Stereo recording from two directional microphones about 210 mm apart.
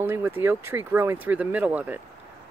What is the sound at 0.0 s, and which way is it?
Speech, 10° right (ahead or behind).